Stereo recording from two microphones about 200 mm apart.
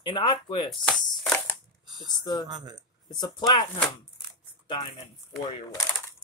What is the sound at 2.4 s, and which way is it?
Speech, 20° right (ahead or behind).